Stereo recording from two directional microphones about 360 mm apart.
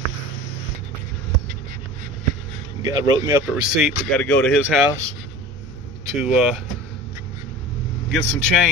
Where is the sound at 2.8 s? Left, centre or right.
Centre.